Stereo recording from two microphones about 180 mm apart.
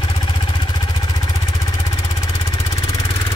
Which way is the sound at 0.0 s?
25° left (ahead or behind).